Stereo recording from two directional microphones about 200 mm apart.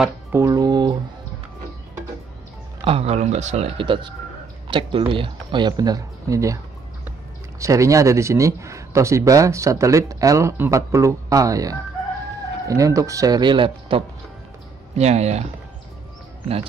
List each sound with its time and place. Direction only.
0.0 s speech: 10° right (ahead or behind)
2.8 s speech: 30° right (ahead or behind)